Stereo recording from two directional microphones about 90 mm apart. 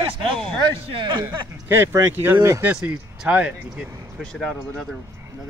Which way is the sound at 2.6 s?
15° right (ahead or behind).